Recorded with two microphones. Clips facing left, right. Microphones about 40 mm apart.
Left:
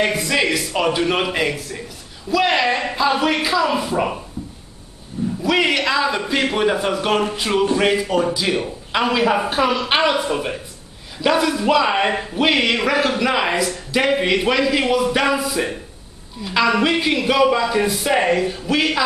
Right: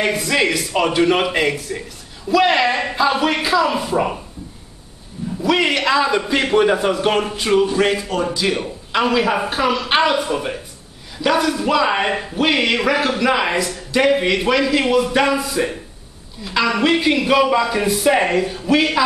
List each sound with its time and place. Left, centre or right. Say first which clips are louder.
0.0 s a man's voice: right 1 dB; centre
5.4 s a man's voice: right 1 dB; centre